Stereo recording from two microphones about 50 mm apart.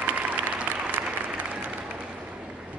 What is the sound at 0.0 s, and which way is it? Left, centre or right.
Applause, right.